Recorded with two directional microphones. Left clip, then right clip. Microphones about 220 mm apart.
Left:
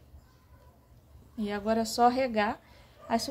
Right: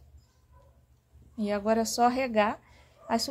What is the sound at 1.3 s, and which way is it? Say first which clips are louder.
Speech: right 3 dB; 25° right (ahead or behind).